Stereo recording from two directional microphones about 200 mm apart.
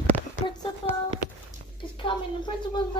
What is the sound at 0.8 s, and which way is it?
Speech, 25° left (ahead or behind).